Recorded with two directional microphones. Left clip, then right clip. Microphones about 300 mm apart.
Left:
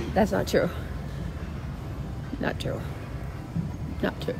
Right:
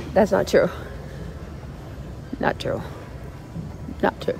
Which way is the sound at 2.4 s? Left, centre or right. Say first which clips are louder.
Right 7 dB; right.